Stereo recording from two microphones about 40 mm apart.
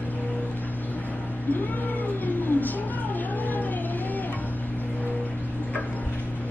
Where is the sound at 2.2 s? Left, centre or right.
Left.